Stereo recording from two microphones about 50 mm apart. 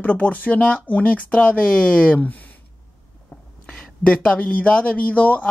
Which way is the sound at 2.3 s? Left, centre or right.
Left.